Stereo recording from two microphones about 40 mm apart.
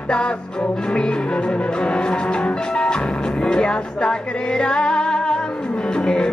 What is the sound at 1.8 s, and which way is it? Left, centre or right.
Music, left.